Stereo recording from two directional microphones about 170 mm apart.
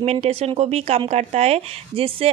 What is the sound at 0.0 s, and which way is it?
A woman's voice, 35° right (ahead or behind).